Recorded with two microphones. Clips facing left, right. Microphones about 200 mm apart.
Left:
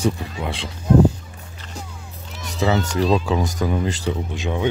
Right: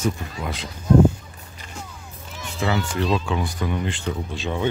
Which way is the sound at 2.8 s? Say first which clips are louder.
Left 4 dB; 40° left (ahead or behind).